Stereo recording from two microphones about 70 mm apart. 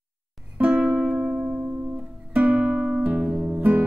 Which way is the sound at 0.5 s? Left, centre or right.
Centre.